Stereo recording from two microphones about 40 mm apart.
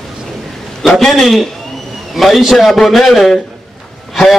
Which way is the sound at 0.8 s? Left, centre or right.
Centre.